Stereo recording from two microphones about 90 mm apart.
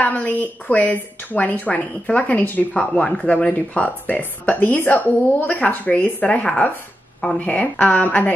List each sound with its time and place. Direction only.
0.0 s speech: 15° left (ahead or behind)